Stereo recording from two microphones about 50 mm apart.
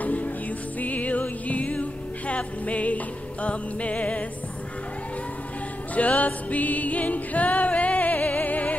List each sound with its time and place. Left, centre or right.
0.0 s music: left
5.9 s music: left